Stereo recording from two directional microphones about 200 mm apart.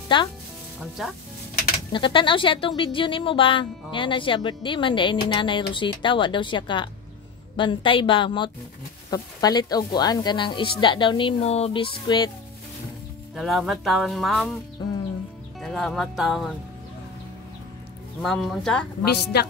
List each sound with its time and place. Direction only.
0.1 s speech: 25° left (ahead or behind)
1.0 s speech: centre (ahead or behind)
1.9 s speech: 25° left (ahead or behind)
13.3 s speech: centre (ahead or behind)
15.6 s speech: centre (ahead or behind)
18.2 s speech: centre (ahead or behind)